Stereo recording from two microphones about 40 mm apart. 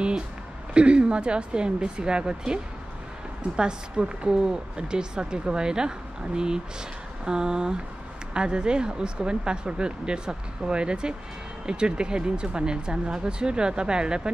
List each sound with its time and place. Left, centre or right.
0.7 s a woman's voice: right